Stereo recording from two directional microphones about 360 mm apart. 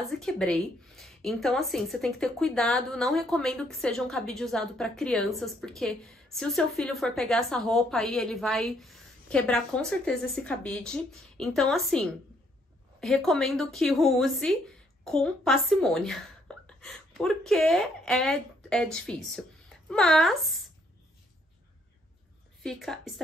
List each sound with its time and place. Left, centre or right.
0.0 s a woman's voice: centre
22.6 s speech: centre